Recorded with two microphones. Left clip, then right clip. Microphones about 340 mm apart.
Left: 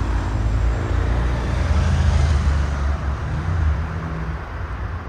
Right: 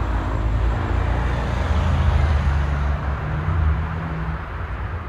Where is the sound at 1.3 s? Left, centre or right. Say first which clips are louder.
Right 1 dB; right.